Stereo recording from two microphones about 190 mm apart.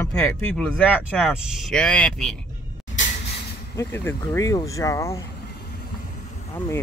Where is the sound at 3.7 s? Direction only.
15° left (ahead or behind).